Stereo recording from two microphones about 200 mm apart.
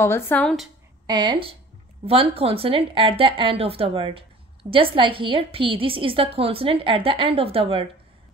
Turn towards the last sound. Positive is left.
turn(degrees=-30)  # may be behind; listen again after turning